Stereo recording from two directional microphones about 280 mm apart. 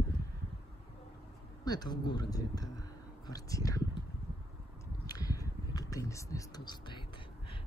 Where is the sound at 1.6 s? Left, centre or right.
Centre.